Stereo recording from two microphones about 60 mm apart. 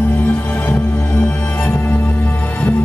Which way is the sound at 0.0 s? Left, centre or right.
Left.